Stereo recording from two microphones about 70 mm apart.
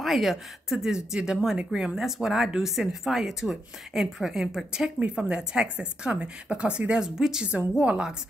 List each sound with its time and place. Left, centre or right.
0.0 s speech: centre